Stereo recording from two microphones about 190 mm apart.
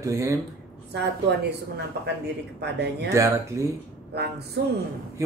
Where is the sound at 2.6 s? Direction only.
60° right (ahead or behind).